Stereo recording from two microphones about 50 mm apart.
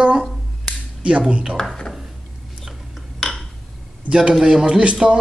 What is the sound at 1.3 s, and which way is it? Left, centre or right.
Speech, right.